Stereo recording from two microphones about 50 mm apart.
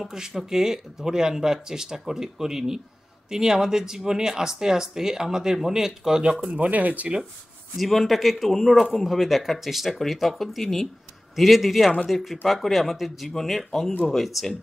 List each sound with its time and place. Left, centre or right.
0.0 s speech: centre
6.4 s speech: right
7.7 s speech: centre